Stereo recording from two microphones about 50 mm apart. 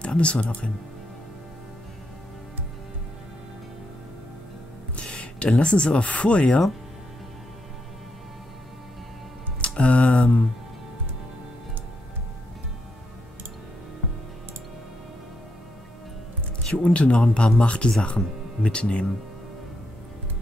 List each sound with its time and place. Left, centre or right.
0.0 s speech: left
4.9 s speech: left
9.6 s a sound: left
16.7 s speech: left